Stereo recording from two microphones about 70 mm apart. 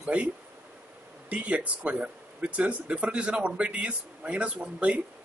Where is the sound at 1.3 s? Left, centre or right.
Centre.